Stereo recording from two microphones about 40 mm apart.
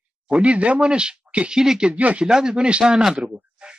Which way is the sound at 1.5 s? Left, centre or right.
Centre.